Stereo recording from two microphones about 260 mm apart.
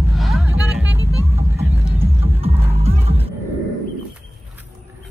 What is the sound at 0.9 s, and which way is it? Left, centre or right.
Vehicle, right.